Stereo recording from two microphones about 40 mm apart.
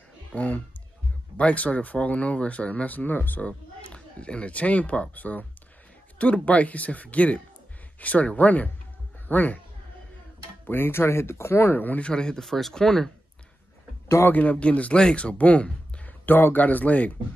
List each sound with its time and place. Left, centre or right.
0.3 s speech: left
3.4 s speech: left
6.1 s speech: left
10.7 s speech: left
12.0 s speech: centre
12.4 s speech: centre
14.5 s speech: left
16.3 s speech: left
16.5 s speech: left